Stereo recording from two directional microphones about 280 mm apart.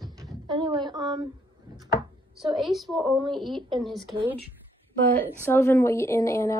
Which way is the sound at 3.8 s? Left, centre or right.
Centre.